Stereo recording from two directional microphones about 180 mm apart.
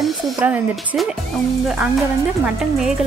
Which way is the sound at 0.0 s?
5° right (ahead or behind).